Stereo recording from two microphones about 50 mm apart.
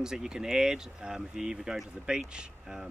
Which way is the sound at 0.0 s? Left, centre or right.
Centre.